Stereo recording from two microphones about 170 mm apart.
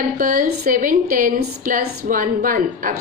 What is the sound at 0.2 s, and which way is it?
A woman's voice, 55° right (ahead or behind).